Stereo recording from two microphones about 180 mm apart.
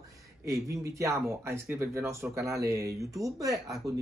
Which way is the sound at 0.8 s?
15° right (ahead or behind).